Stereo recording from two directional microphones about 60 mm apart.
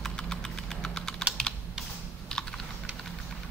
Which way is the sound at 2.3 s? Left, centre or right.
Centre.